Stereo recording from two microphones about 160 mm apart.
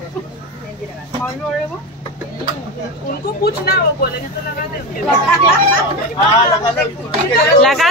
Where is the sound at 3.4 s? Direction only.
75° left (ahead or behind).